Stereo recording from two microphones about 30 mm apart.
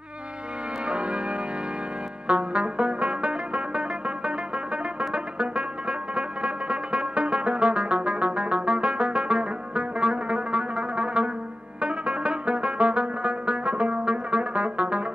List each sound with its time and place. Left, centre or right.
0.8 s music: right